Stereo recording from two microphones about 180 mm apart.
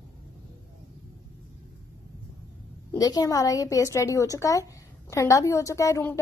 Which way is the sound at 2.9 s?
20° left (ahead or behind).